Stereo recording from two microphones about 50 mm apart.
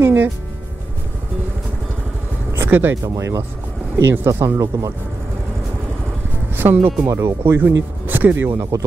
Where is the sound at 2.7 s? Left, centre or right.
Right.